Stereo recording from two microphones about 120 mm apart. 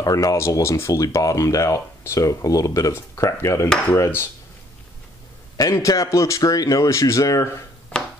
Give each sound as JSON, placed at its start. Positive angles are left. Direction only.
{"t": 0.0, "sound": "speech", "side_deg": 30}
{"t": 5.6, "sound": "speech", "side_deg": 25}